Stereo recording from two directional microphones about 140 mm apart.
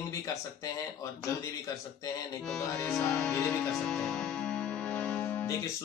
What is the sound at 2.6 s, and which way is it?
Music, 20° left (ahead or behind).